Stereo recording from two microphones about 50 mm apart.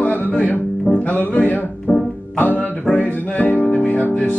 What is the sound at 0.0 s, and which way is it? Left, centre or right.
Music, left.